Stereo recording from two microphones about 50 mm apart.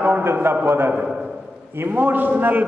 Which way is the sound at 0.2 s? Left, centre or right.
Right.